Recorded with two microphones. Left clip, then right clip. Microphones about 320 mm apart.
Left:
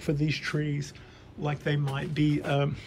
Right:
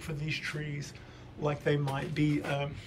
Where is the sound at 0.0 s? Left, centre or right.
Centre.